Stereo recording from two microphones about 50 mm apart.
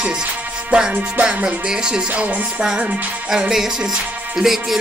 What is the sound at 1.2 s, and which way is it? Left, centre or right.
Speech, right.